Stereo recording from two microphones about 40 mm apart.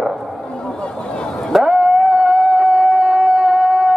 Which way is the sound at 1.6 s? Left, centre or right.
Centre.